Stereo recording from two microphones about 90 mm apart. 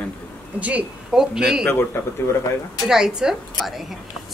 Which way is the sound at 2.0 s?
25° left (ahead or behind).